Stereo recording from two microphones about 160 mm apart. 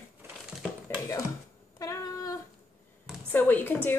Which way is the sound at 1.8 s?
20° left (ahead or behind).